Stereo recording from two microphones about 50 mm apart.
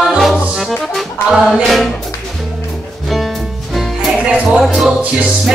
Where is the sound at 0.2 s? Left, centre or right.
Centre.